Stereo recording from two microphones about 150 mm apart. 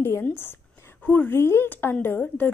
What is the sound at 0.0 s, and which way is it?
A woman's voice, 15° left (ahead or behind).